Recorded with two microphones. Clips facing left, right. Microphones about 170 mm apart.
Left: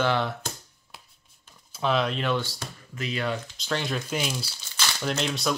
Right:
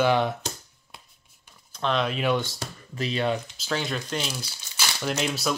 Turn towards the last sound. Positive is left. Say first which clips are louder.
# even
turn(degrees=-5)  # may be behind; listen again after turning